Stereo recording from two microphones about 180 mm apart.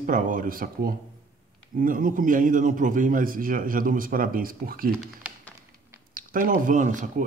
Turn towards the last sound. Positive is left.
turn(degrees=-45)  # may be behind; listen again after turning